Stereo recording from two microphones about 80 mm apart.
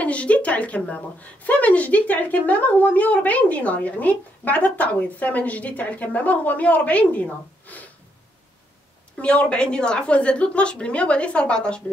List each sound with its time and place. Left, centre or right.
0.0 s a woman's voice: centre
9.1 s a woman's voice: centre